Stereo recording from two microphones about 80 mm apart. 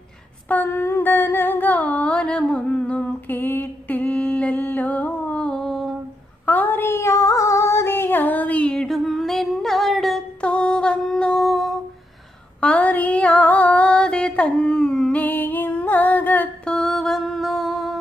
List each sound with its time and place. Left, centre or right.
0.5 s a sound: left; by 5.9 s centre
6.4 s female singing: left
8.8 s humming: centre
10.4 s a sound: centre
12.5 s female singing: centre
16.6 s mantra: centre